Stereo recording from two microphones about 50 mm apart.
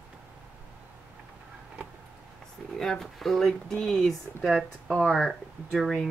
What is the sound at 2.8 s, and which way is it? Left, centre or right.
Speech, centre.